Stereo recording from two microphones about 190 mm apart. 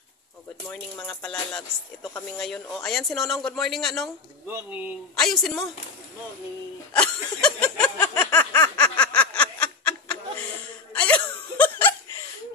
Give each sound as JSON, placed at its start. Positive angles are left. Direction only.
{"t": 0.7, "sound": "a man's voice", "side_deg": 5}
{"t": 4.5, "sound": "a man's voice", "side_deg": -10}
{"t": 7.0, "sound": "a sound", "side_deg": 5}
{"t": 10.9, "sound": "laughter", "side_deg": 5}